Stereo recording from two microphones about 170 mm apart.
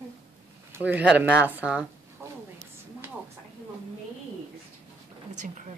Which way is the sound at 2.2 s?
15° right (ahead or behind).